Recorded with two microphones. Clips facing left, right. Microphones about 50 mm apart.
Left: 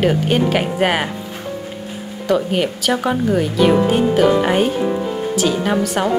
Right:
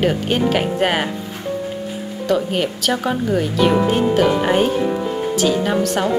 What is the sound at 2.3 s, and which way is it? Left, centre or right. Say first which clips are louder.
A woman's voice: left 2 dB; centre.